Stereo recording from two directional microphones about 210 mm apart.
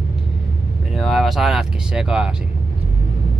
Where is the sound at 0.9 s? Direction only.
Centre (ahead or behind).